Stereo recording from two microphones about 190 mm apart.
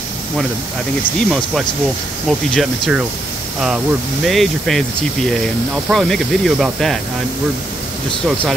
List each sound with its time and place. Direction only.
2.2 s speech: centre (ahead or behind)
4.3 s speech: centre (ahead or behind)
5.9 s speech: centre (ahead or behind)